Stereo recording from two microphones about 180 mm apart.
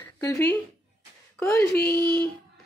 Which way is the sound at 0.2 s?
15° left (ahead or behind).